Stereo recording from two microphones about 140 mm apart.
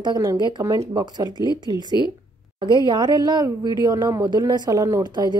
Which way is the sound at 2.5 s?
30° right (ahead or behind).